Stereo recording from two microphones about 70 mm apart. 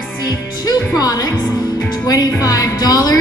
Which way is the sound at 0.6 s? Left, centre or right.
Left.